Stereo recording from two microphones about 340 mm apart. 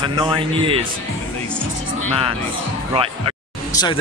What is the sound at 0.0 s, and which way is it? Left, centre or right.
Speech, centre.